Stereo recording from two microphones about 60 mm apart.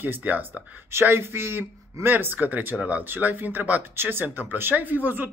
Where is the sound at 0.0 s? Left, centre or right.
Right.